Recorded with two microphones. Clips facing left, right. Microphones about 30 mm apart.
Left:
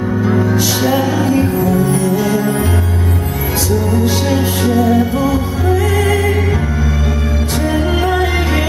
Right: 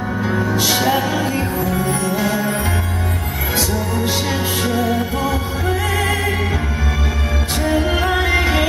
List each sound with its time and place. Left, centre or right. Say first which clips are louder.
0.3 s music: left 2 dB; centre
4.3 s music: left 5 dB; centre
5.7 s music: left 5 dB; right
7.7 s music: left 1 dB; centre